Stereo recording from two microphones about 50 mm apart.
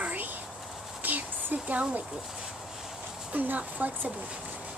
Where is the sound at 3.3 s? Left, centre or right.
Right.